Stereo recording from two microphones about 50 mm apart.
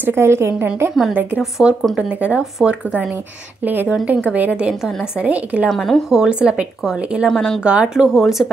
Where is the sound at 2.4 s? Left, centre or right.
Centre.